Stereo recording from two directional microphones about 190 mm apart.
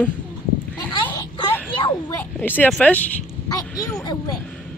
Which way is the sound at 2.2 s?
10° left (ahead or behind).